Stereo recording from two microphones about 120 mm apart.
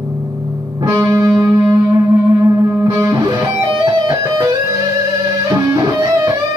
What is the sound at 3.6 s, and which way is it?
Music, 45° right (ahead or behind).